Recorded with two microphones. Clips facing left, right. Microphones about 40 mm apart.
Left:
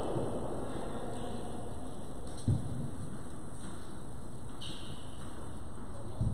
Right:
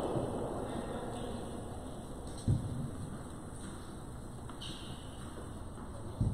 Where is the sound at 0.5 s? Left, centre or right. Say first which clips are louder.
Right 1 dB; centre.